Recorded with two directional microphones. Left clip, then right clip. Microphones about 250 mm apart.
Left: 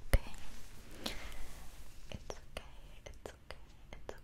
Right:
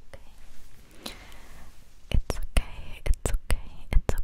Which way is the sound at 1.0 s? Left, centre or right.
Centre.